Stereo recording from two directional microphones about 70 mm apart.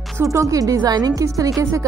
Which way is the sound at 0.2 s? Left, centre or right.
Right.